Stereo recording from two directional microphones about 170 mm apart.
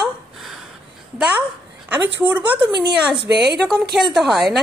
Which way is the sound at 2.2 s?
10° right (ahead or behind).